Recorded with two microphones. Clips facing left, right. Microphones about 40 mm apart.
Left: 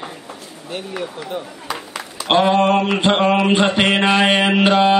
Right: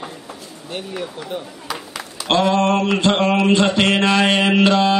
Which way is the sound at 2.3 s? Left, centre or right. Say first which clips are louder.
Left 2 dB; left.